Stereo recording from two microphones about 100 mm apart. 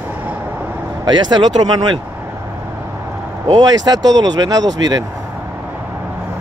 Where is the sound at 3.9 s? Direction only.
40° right (ahead or behind).